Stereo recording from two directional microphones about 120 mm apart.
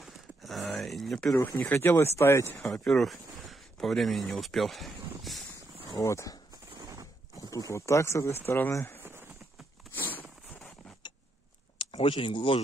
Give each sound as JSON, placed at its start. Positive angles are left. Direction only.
{"t": 0.0, "sound": "a sound", "side_deg": 0}
{"t": 1.4, "sound": "speech", "side_deg": 15}
{"t": 2.6, "sound": "speech", "side_deg": 5}
{"t": 5.9, "sound": "speech", "side_deg": 25}
{"t": 6.8, "sound": "a sound", "side_deg": -30}
{"t": 7.5, "sound": "speech", "side_deg": 25}
{"t": 11.8, "sound": "speech", "side_deg": 50}